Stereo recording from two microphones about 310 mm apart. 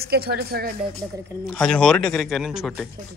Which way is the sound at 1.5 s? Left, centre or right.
Centre.